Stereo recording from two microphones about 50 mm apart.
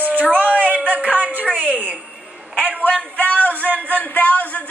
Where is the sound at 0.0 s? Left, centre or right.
Right.